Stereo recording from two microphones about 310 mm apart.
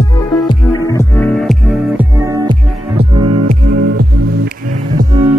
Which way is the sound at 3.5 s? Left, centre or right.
Right.